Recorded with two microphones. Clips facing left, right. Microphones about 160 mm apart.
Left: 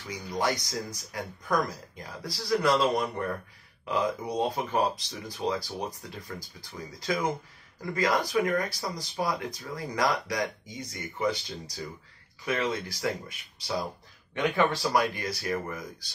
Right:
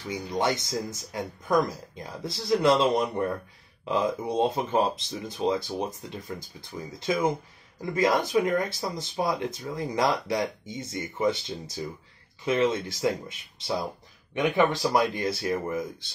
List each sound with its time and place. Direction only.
0.1 s speech: 25° right (ahead or behind)